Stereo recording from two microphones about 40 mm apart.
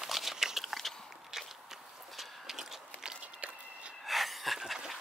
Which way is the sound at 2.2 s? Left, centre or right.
Centre.